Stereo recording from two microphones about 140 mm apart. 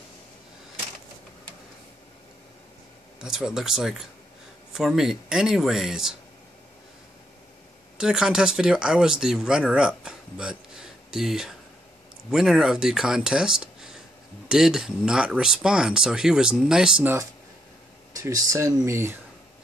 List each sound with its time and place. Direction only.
3.2 s speech: 5° right (ahead or behind)
8.0 s speech: 5° right (ahead or behind)
18.1 s speech: 25° right (ahead or behind)